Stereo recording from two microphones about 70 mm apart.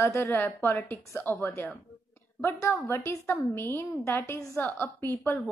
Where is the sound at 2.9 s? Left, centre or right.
Left.